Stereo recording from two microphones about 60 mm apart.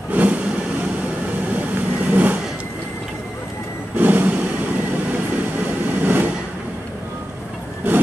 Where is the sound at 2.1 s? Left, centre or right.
Right.